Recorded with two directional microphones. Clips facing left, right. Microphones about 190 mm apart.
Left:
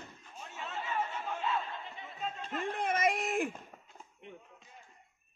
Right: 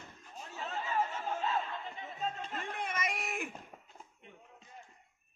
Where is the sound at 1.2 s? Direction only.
40° right (ahead or behind).